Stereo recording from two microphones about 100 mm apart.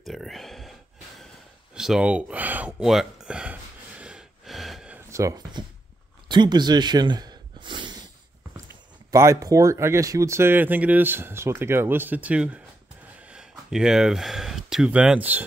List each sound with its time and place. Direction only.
0.0 s speech: centre (ahead or behind)
1.8 s speech: 5° right (ahead or behind)
2.8 s gasp: 5° right (ahead or behind)
5.1 s speech: 30° right (ahead or behind)
6.2 s snort: 50° right (ahead or behind)
9.1 s speech: 30° right (ahead or behind)